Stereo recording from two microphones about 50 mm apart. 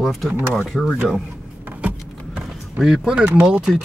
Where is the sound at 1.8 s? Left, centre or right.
Right.